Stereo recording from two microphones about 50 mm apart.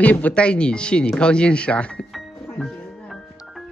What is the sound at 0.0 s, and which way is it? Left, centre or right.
Speech, left.